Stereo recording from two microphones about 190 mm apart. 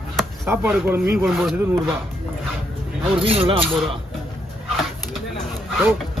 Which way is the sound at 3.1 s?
30° right (ahead or behind).